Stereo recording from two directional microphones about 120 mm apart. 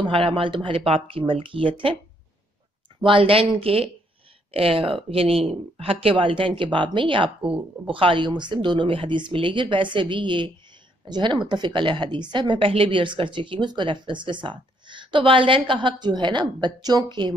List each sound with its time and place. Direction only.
0.0 s a woman's voice: 45° right (ahead or behind)
3.0 s a woman's voice: 45° right (ahead or behind)